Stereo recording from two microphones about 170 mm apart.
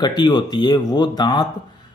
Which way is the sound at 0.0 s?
25° left (ahead or behind).